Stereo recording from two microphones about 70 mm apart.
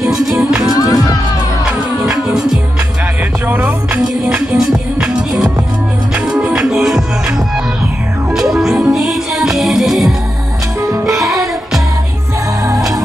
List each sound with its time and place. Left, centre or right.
0.0 s music: centre
0.7 s music: left
2.0 s music: centre
3.4 s music: right
4.3 s music: centre
8.4 s music: centre
10.8 s music: right